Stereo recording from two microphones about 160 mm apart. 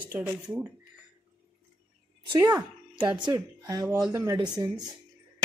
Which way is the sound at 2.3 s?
20° right (ahead or behind).